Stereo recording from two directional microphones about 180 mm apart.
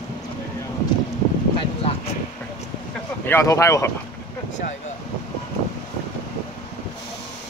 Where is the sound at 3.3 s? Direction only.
15° left (ahead or behind).